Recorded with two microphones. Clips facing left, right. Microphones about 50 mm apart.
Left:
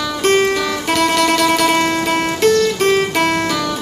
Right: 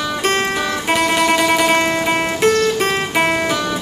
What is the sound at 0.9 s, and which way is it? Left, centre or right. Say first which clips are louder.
Music: left 1 dB; centre.